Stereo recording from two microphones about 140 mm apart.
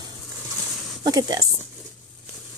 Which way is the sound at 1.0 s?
30° right (ahead or behind).